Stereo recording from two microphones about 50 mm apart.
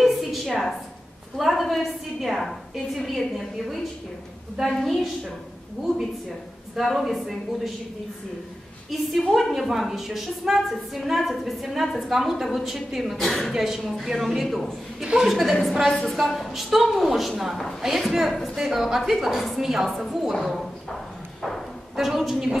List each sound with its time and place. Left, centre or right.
0.0 s a sound: centre
1.4 s a woman's voice: centre
7.0 s a woman's voice: centre
9.3 s a woman's voice: centre
15.9 s a woman's voice: centre
16.2 s a woman's voice: centre
20.3 s clip-clop: centre
21.9 s a woman's voice: centre